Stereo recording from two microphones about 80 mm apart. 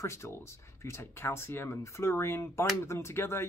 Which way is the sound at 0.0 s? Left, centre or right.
Left.